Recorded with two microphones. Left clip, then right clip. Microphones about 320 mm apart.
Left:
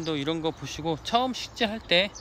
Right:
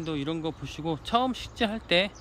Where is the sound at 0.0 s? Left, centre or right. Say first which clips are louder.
Left 3 dB; centre.